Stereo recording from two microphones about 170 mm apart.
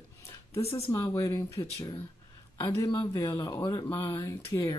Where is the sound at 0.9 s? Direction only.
20° left (ahead or behind).